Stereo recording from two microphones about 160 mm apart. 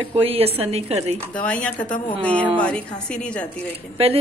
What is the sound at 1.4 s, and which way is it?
A woman's voice, 10° left (ahead or behind).